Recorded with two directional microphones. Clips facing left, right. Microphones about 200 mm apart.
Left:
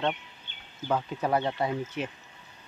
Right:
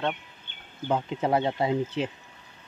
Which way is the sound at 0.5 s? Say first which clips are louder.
Right 1 dB; 55° right (ahead or behind).